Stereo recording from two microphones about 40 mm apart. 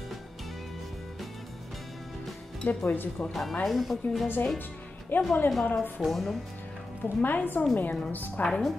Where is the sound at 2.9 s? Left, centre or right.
Left.